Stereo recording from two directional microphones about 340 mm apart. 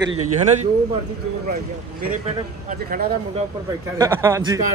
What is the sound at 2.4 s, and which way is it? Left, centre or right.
Speech, right.